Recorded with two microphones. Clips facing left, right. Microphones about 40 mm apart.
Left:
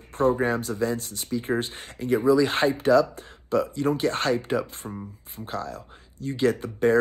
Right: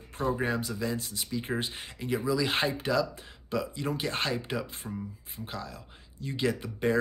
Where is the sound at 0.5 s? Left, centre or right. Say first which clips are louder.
Left 6 dB; left.